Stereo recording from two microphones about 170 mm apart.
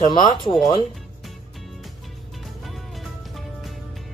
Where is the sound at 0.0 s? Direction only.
30° left (ahead or behind).